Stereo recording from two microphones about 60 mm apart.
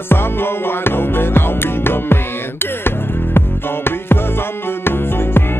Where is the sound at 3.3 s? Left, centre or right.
Left.